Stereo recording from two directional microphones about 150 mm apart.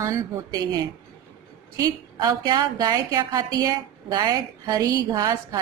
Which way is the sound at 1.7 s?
25° right (ahead or behind).